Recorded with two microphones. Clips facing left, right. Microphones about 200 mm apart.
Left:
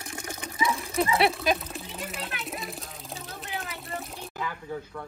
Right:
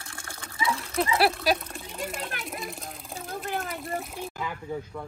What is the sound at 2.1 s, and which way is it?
Children playing, 45° right (ahead or behind).